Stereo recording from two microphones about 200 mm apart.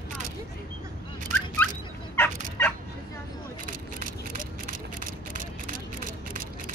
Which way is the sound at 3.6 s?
40° right (ahead or behind).